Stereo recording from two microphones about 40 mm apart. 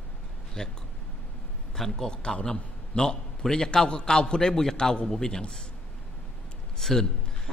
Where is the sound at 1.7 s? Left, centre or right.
Centre.